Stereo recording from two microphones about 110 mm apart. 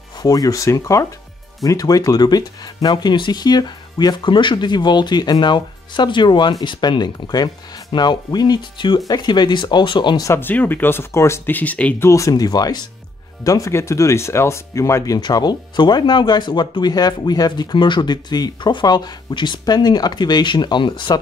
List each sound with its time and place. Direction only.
0.2 s speech: 35° left (ahead or behind)
10.2 s speech: 20° left (ahead or behind)
12.0 s speech: 30° left (ahead or behind); by 21.2 s 45° left (ahead or behind)